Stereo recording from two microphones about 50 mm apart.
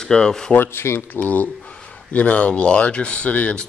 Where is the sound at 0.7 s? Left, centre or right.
Left.